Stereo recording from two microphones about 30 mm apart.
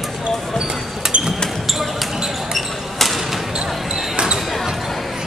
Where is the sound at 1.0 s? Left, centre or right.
Centre.